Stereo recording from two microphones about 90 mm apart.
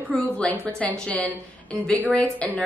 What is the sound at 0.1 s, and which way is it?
A woman's voice, 15° left (ahead or behind).